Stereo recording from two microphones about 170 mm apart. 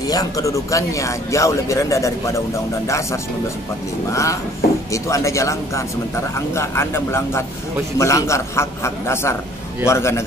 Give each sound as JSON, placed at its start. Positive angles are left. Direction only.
{"t": 0.1, "sound": "a man's voice", "side_deg": 20}
{"t": 4.1, "sound": "a man's voice", "side_deg": 20}